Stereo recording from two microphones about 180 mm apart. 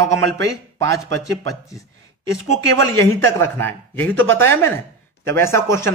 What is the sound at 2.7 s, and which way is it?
Speech, 15° left (ahead or behind).